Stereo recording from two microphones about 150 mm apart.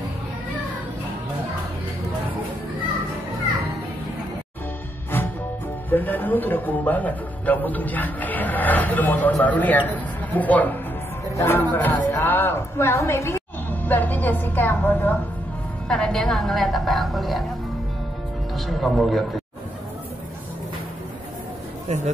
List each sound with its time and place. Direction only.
5.1 s music: 15° left (ahead or behind)
5.9 s a man's voice: 10° left (ahead or behind)
18.5 s a woman's voice: centre (ahead or behind)
21.8 s speech: 50° right (ahead or behind)